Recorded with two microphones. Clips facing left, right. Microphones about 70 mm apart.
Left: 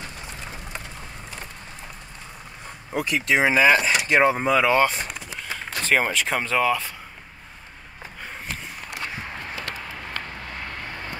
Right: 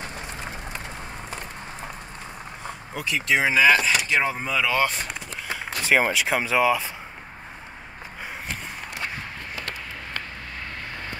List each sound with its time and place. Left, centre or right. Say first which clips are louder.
2.9 s speech: left 5 dB; left
3.3 s speech: left 1 dB; centre
4.1 s speech: left 6 dB; left
4.8 s vehicle: left 2 dB; centre
5.5 s speech: right 1 dB; centre